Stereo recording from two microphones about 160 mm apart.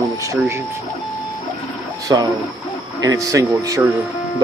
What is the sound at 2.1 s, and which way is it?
Speech, 20° right (ahead or behind).